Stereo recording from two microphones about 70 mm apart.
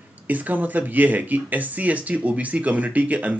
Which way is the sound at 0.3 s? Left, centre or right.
Right.